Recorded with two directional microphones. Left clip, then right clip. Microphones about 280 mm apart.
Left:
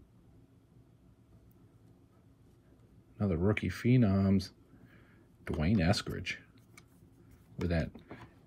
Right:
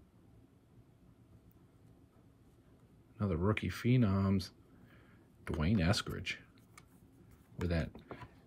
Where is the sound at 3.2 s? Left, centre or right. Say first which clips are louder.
Left 3 dB; centre.